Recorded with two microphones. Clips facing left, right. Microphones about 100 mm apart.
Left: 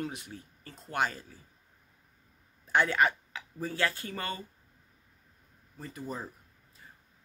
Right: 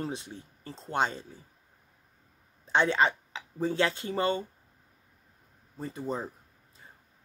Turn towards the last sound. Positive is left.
turn(degrees=-25)  # may be behind; listen again after turning